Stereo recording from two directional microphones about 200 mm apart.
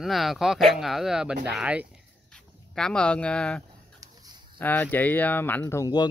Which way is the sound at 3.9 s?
15° right (ahead or behind).